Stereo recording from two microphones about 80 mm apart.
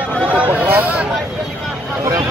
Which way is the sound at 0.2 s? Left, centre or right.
Centre.